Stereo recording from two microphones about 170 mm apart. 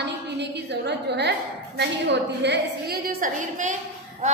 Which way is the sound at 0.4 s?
80° right.